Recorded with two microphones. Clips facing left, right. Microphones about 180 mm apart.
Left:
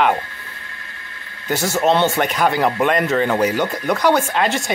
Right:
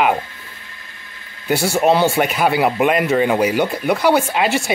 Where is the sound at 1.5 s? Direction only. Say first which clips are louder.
Right 2 dB; 10° right (ahead or behind).